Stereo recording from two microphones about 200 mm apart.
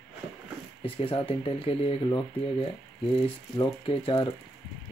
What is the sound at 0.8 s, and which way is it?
Speech, 25° left (ahead or behind).